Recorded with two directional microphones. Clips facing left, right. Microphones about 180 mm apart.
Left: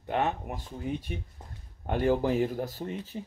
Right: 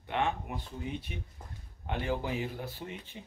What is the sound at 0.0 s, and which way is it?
Speech, 40° left (ahead or behind).